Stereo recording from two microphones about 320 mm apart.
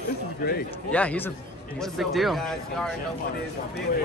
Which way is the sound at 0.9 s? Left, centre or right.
Centre.